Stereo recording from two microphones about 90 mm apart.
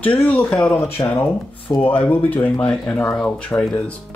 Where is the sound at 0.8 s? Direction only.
30° left (ahead or behind).